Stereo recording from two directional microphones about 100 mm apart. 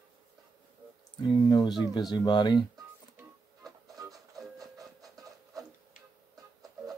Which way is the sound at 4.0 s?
40° right (ahead or behind).